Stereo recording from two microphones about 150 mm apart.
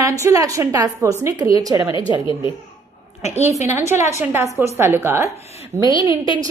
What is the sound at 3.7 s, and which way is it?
A woman's voice, 15° right (ahead or behind).